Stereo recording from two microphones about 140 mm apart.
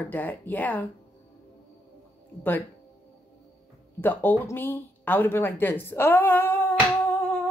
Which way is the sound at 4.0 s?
15° left (ahead or behind).